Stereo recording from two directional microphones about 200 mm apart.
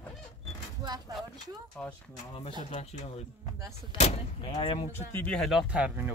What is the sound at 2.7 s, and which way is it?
Speech, 35° left (ahead or behind).